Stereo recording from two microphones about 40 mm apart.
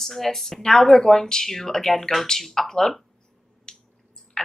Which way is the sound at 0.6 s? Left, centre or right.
Centre.